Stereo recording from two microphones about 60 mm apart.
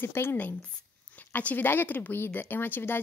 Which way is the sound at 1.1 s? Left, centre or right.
Left.